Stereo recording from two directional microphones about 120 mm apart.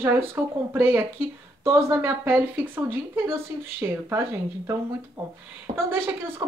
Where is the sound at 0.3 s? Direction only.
20° right (ahead or behind).